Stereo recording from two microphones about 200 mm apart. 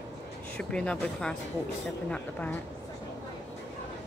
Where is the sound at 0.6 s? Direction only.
5° left (ahead or behind).